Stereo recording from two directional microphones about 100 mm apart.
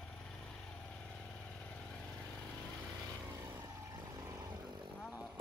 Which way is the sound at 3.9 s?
35° right (ahead or behind).